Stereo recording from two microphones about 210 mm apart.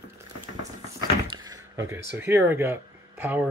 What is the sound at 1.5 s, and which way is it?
Speech, 15° right (ahead or behind).